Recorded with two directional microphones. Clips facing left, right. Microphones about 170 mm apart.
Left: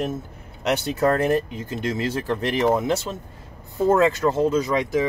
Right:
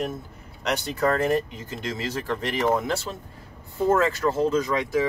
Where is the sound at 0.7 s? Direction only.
20° left (ahead or behind).